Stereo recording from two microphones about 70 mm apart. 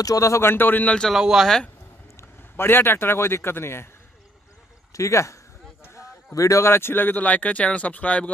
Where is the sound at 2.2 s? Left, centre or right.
Left.